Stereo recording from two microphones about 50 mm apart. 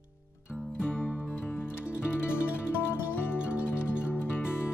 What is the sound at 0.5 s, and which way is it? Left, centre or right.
Music, left.